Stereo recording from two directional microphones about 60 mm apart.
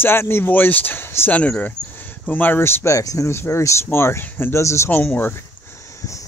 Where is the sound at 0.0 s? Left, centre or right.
Left.